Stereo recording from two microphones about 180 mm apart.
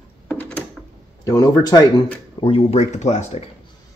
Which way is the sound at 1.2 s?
20° left (ahead or behind).